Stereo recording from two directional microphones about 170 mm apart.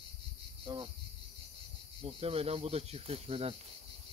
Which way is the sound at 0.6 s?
25° right (ahead or behind).